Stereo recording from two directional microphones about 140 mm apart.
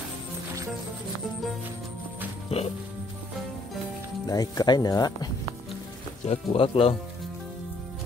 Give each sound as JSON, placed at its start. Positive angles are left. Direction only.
{"t": 2.5, "sound": "speech", "side_deg": 45}
{"t": 4.3, "sound": "speech", "side_deg": 25}
{"t": 6.2, "sound": "speech", "side_deg": 45}